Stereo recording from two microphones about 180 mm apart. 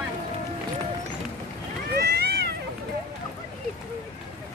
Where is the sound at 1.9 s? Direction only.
60° right (ahead or behind).